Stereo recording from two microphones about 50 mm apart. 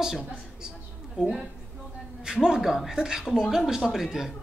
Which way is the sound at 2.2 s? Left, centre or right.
Centre.